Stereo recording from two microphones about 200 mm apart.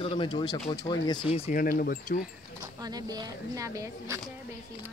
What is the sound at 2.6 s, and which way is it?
Speech, 20° right (ahead or behind).